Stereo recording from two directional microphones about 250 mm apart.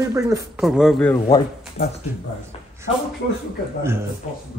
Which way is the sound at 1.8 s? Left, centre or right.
Left.